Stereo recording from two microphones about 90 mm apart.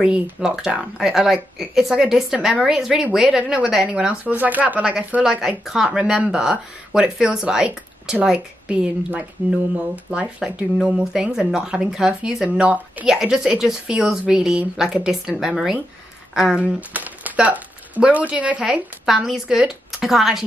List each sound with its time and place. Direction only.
0.0 s a woman's voice: 10° right (ahead or behind)
16.6 s speech: 20° right (ahead or behind)